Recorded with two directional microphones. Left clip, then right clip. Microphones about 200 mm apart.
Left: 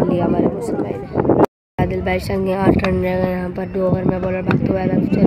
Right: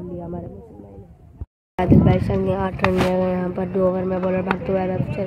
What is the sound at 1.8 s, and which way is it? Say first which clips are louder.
Speech: right 1 dB; 5° left (ahead or behind).